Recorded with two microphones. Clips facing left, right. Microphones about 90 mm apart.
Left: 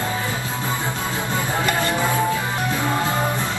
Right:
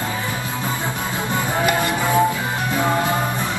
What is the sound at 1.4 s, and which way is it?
Music, 20° right (ahead or behind).